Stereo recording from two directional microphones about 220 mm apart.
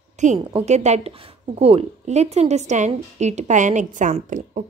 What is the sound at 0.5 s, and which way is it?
A woman's voice, 30° right (ahead or behind).